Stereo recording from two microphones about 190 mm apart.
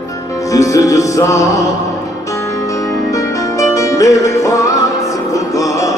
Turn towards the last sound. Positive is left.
turn(degrees=15)  # may be behind; listen again after turning